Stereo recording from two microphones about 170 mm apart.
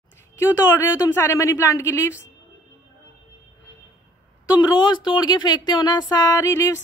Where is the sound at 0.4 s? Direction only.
15° left (ahead or behind).